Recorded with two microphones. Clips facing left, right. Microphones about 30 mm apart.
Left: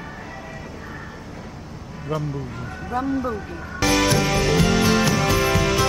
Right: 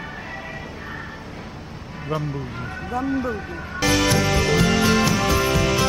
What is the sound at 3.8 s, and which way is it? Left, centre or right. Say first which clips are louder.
Music: even; centre.